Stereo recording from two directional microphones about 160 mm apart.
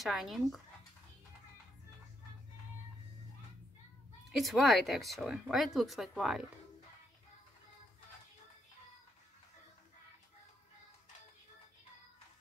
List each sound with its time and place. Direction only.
0.0 s speech: centre (ahead or behind)
4.4 s speech: centre (ahead or behind)